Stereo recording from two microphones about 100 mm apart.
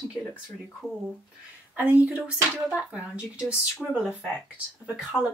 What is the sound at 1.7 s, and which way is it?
Speech, 15° right (ahead or behind).